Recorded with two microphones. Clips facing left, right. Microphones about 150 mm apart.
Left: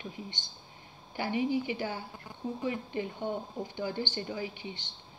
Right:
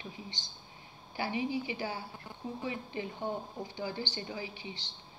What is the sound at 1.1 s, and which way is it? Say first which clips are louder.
A woman's voice: left 4 dB; 55° left (ahead or behind).